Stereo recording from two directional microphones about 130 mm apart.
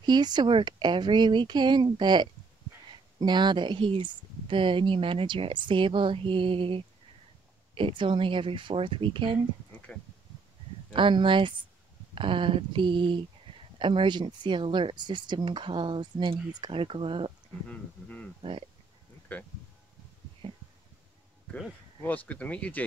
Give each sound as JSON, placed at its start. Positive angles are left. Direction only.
{"t": 0.0, "sound": "speech", "side_deg": -35}
{"t": 10.9, "sound": "speech", "side_deg": -40}
{"t": 17.6, "sound": "speech", "side_deg": 10}
{"t": 20.4, "sound": "a sound", "side_deg": -40}
{"t": 22.0, "sound": "speech", "side_deg": 10}